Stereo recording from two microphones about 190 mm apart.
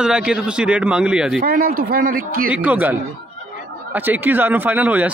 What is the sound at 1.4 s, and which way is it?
Speech, 50° right (ahead or behind).